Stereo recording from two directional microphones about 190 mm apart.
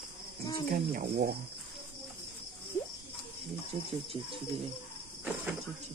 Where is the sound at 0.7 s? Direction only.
55° right (ahead or behind).